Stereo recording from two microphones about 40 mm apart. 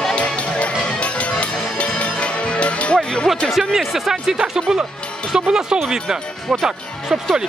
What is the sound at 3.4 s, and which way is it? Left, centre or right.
Speech, centre.